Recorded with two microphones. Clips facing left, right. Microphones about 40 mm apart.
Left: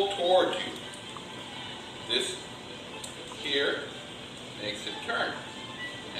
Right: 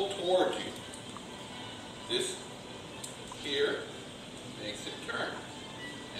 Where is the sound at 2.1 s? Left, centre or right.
Left.